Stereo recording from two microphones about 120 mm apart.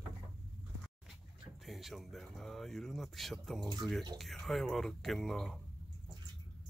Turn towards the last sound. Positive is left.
turn(degrees=0)  # may be behind; listen again after turning